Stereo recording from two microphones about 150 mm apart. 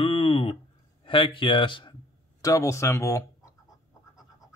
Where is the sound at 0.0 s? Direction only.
40° left (ahead or behind).